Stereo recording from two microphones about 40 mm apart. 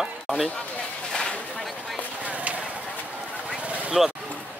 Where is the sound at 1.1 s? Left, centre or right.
Centre.